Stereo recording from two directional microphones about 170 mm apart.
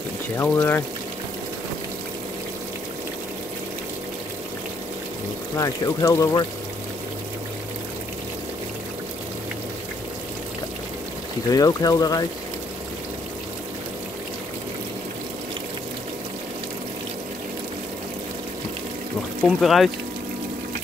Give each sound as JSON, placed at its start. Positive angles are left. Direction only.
{"t": 0.4, "sound": "speech", "side_deg": 15}
{"t": 5.6, "sound": "speech", "side_deg": 20}
{"t": 11.5, "sound": "speech", "side_deg": 20}
{"t": 19.4, "sound": "speech", "side_deg": 0}